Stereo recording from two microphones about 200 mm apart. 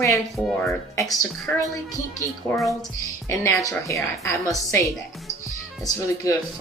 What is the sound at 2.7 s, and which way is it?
Speech, 15° left (ahead or behind).